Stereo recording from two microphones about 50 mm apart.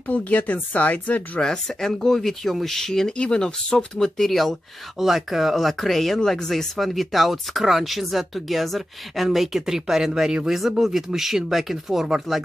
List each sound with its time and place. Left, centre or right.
0.1 s speech: left
1.4 s speech: centre
4.9 s speech: centre